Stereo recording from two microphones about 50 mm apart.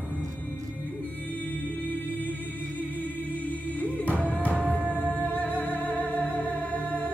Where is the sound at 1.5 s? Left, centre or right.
Left.